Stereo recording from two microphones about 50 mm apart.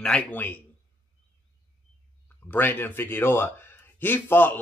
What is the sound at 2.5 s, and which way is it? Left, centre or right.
Speech, left.